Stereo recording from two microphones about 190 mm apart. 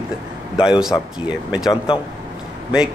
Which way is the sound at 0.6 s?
5° right (ahead or behind).